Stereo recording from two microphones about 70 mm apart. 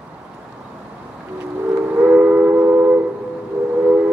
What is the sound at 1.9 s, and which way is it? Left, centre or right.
Train, right.